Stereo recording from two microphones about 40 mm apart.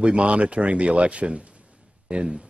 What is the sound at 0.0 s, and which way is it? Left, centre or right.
Speech, right.